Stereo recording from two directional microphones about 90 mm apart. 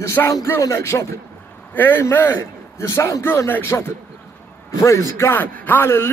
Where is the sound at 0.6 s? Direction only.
35° left (ahead or behind).